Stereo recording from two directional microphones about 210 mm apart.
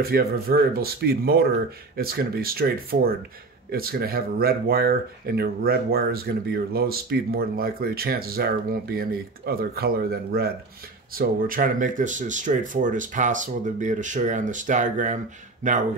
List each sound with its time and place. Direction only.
0.0 s speech: 45° right (ahead or behind)